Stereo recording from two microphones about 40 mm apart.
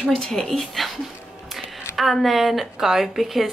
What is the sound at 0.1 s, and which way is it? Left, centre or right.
Speech, centre.